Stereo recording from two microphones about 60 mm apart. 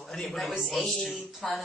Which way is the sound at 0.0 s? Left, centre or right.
Centre.